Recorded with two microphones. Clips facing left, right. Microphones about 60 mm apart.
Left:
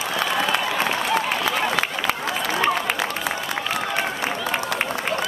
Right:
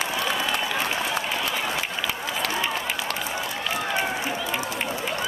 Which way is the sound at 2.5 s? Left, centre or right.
Left.